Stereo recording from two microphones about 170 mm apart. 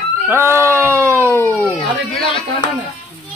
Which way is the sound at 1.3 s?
10° left (ahead or behind).